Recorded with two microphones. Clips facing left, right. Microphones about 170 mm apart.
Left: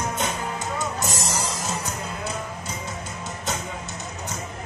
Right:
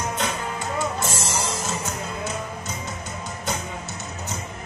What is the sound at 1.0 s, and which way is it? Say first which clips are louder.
Music: right 1 dB; 40° left (ahead or behind).